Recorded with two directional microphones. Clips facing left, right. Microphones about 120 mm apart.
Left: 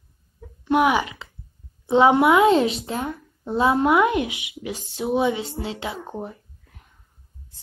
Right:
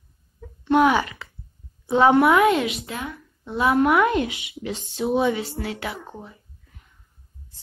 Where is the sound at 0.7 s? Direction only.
15° left (ahead or behind).